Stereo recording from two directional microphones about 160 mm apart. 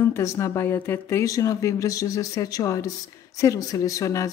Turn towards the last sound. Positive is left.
turn(degrees=20)  # may be behind; listen again after turning